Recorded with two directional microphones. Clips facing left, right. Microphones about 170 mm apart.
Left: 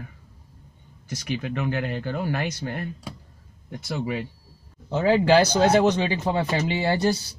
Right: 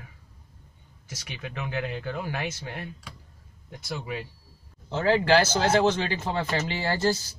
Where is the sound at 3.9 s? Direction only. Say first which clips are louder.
Left 5 dB; centre (ahead or behind).